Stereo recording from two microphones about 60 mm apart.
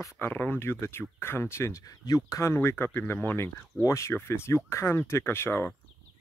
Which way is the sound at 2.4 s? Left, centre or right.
Left.